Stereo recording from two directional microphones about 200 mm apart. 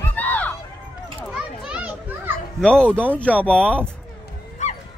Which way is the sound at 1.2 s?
5° right (ahead or behind).